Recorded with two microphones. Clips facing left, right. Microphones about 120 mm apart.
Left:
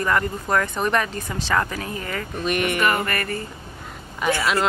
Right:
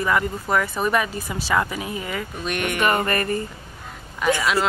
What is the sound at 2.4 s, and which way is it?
Speech, centre (ahead or behind).